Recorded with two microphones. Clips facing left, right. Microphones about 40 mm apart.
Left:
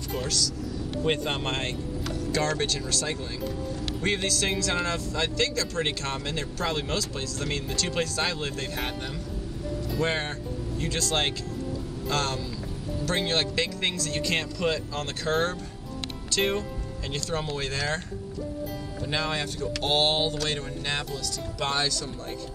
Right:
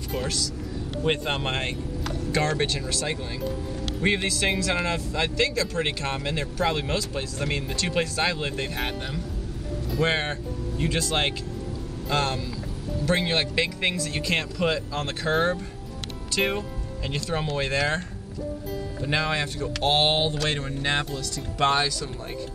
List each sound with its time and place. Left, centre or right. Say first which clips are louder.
0.2 s speech: left 1 dB; right
1.0 s speech: right 2 dB; centre
10.0 s speech: right 5 dB; right
19.0 s speech: right 3 dB; right